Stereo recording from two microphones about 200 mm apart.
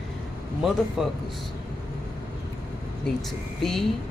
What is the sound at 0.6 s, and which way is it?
Speech, centre (ahead or behind).